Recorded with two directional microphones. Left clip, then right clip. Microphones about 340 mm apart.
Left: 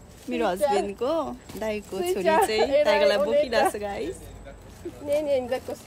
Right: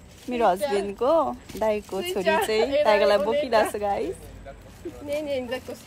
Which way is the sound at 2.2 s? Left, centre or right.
Left.